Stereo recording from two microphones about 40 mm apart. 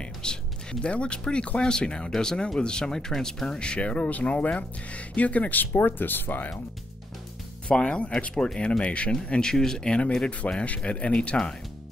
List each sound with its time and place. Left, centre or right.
0.2 s speech: left
3.5 s speech: left
5.8 s speech: left
7.6 s speech: left
10.4 s speech: left
10.8 s speech: left